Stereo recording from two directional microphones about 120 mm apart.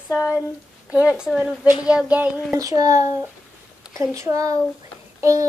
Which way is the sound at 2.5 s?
30° right (ahead or behind).